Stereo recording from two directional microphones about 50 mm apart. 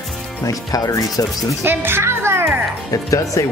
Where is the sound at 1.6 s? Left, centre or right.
Right.